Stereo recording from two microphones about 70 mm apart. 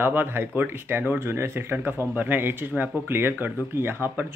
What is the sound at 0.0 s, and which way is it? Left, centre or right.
Speech, right.